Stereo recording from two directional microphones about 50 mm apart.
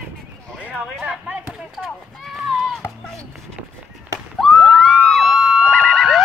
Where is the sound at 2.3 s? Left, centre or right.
Centre.